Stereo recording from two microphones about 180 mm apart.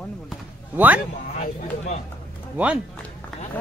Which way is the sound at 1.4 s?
45° left (ahead or behind).